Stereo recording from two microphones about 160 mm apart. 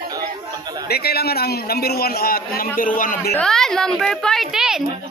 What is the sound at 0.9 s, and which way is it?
A man's voice, 80° left.